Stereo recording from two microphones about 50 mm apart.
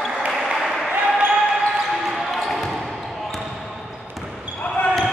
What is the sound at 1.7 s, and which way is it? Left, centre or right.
Basketball bounce, centre.